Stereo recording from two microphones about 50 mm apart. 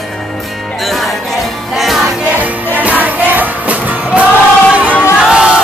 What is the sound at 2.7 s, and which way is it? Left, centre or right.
Music, right.